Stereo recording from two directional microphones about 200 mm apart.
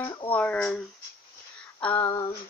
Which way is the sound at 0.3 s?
5° left (ahead or behind).